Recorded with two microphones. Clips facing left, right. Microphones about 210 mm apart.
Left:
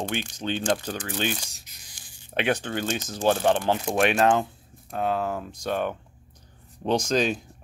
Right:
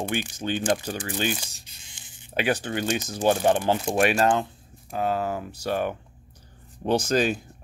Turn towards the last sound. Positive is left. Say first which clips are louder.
# right 1 dB
turn(degrees=-5)  # may be behind; listen again after turning